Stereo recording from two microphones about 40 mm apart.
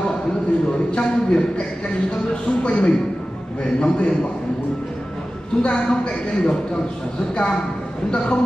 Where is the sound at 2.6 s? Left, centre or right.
Left.